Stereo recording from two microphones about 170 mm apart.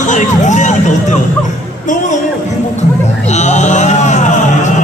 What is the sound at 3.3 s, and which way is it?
Music, 45° left (ahead or behind).